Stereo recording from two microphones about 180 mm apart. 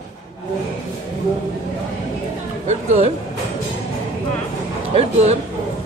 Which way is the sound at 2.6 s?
40° right (ahead or behind).